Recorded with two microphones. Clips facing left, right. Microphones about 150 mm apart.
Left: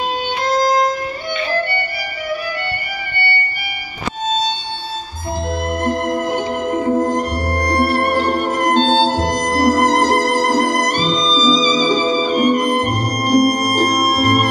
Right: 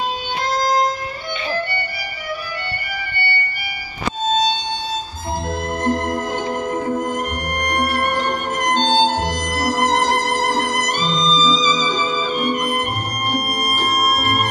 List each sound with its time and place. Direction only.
5.9 s music: 20° left (ahead or behind)
6.9 s music: 35° left (ahead or behind)